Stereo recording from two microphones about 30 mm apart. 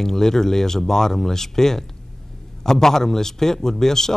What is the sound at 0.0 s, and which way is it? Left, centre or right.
Speech, centre.